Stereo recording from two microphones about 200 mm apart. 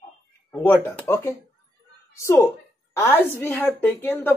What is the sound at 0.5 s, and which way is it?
Speech, 10° left (ahead or behind).